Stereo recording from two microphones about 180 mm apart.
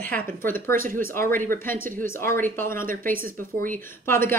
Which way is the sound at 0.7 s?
50° right (ahead or behind).